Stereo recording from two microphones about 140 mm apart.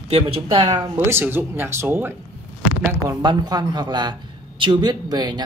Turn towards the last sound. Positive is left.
turn(degrees=-30)  # may be behind; listen again after turning